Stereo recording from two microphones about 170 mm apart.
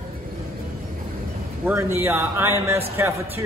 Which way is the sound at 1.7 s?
15° right (ahead or behind).